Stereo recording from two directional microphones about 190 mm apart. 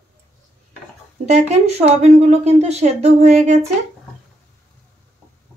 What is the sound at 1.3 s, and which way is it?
A woman's voice, 35° right (ahead or behind).